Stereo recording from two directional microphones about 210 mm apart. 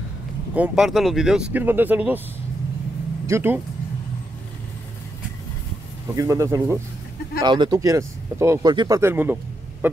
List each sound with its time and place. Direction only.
0.6 s speech: 5° right (ahead or behind)
3.3 s speech: 10° right (ahead or behind)
6.1 s speech: 15° right (ahead or behind)